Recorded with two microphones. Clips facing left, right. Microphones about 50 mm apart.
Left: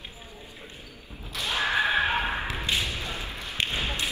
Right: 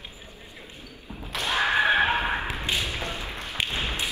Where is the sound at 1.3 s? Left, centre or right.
Right.